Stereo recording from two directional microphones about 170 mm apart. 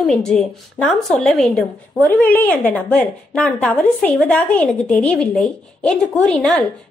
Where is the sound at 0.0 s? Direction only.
5° left (ahead or behind).